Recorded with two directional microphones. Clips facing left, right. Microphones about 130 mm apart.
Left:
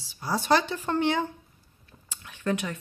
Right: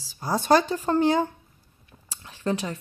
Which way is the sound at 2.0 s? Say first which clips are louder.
Right 2 dB; 35° right (ahead or behind).